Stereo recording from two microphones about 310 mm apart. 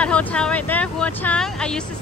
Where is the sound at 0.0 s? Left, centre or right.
Centre.